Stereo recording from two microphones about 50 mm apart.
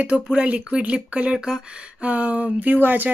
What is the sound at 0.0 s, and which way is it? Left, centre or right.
Speech, right.